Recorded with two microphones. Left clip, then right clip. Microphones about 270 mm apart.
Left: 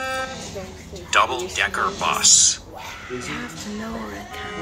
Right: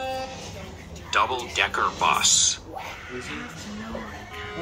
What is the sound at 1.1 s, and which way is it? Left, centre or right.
Speech, centre.